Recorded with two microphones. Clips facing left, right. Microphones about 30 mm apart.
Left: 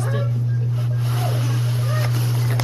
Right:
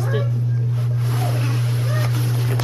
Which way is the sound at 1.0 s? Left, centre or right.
Left.